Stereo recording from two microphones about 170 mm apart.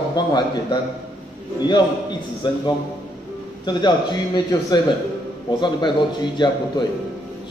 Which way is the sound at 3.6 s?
25° left (ahead or behind).